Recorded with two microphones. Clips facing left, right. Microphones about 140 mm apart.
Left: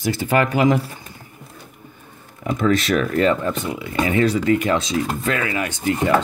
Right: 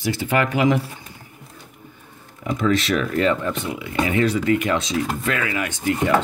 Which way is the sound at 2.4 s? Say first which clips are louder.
Left 2 dB; 45° left (ahead or behind).